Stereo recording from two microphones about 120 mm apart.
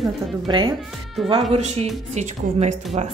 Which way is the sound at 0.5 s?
40° right (ahead or behind).